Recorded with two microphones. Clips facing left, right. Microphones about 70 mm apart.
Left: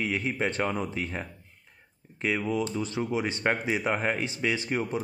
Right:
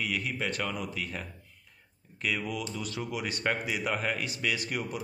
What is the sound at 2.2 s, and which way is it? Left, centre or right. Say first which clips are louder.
Speech: left 5 dB; left.